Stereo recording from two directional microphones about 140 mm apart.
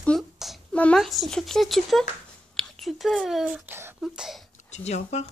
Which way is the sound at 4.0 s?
Centre (ahead or behind).